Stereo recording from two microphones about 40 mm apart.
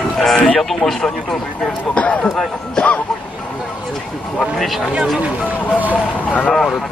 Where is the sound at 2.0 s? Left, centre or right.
Left.